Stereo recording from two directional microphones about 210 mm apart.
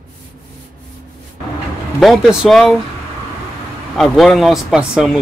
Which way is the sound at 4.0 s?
Centre (ahead or behind).